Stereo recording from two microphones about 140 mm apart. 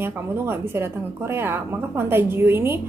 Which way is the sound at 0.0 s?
15° right (ahead or behind).